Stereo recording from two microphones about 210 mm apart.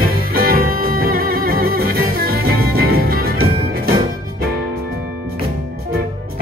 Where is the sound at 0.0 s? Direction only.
45° right (ahead or behind).